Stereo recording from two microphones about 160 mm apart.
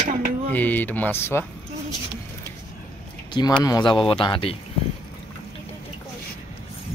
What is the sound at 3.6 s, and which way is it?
Speech, 25° left (ahead or behind).